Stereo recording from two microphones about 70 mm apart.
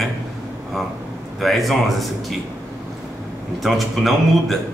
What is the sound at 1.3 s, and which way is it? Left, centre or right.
A man's voice, centre.